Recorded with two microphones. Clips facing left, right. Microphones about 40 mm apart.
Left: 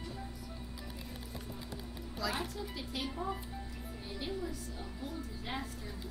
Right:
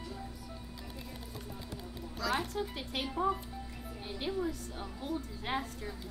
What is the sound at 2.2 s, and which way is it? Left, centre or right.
Speech, centre.